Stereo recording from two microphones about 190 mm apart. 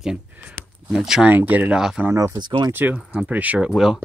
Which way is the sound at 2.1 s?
15° right (ahead or behind).